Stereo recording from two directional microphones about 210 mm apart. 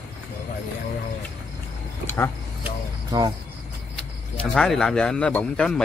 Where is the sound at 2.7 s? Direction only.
15° right (ahead or behind).